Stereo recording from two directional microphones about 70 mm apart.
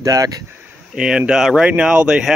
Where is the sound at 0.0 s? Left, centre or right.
Right.